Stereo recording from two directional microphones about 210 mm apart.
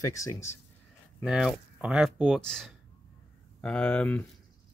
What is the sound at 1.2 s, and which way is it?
Speech, centre (ahead or behind).